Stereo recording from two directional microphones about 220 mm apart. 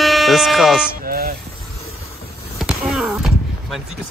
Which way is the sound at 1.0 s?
40° right (ahead or behind).